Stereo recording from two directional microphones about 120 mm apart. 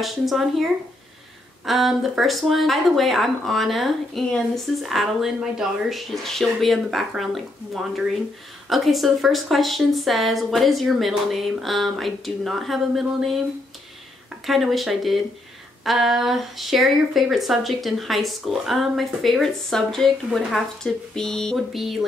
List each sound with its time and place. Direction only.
0.0 s speech: centre (ahead or behind)
1.7 s speech: centre (ahead or behind)
14.4 s speech: centre (ahead or behind)